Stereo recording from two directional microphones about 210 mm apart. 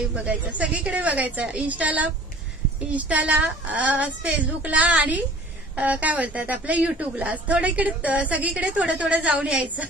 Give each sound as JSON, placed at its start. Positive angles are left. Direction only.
{"t": 0.1, "sound": "a woman's voice", "side_deg": -5}